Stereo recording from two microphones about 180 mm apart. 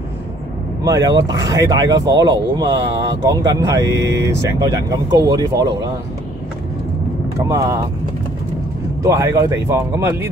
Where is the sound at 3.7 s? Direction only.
75° right (ahead or behind).